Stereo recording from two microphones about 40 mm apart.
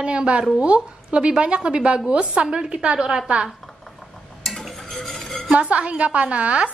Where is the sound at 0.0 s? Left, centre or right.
Right.